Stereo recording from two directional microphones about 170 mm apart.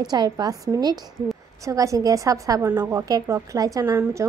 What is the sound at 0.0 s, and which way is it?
A woman's voice, 25° right (ahead or behind).